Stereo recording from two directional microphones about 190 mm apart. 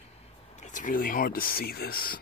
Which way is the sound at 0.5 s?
40° left (ahead or behind).